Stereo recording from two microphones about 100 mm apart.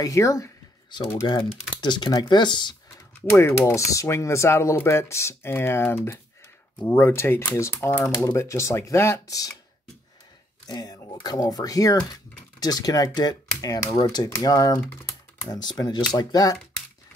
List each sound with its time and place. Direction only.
0.0 s speech: 35° left (ahead or behind)
0.8 s speech: 50° left (ahead or behind)
3.3 s speech: 25° left (ahead or behind)
10.7 s speech: 40° left (ahead or behind)